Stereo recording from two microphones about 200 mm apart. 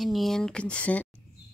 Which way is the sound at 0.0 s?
Centre (ahead or behind).